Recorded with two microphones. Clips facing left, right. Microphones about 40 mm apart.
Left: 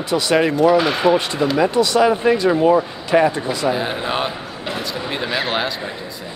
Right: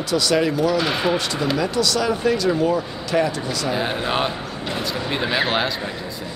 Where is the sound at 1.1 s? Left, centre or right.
Left.